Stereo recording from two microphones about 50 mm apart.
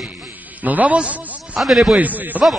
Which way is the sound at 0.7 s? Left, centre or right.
Right.